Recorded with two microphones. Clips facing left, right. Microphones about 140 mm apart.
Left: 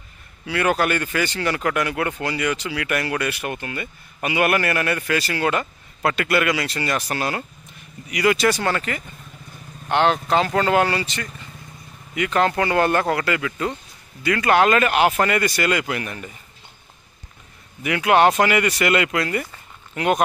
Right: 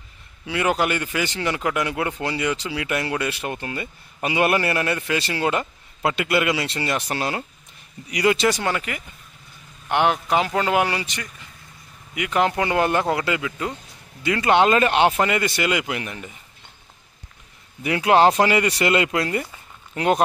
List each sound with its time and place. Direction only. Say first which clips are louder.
0.5 s a man's voice: left 1 dB; 15° right (ahead or behind)
14.2 s a man's voice: even; 20° right (ahead or behind)
17.8 s a man's voice: even; 30° right (ahead or behind)